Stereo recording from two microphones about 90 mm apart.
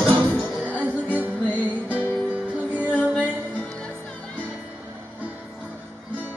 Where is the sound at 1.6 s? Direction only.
15° right (ahead or behind).